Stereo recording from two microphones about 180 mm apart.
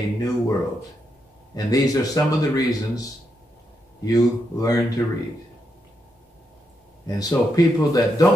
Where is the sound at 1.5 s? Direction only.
20° left (ahead or behind).